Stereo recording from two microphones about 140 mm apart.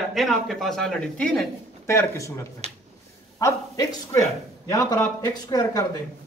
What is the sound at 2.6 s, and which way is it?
Speech, 50° right (ahead or behind).